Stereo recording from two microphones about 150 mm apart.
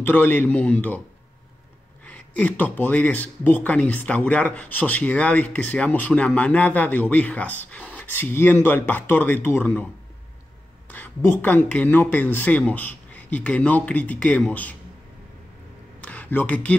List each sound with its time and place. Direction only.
0.0 s speech: 10° left (ahead or behind)
2.0 s speech: 10° left (ahead or behind)
10.9 s speech: 10° left (ahead or behind)
16.0 s a sound: 10° left (ahead or behind)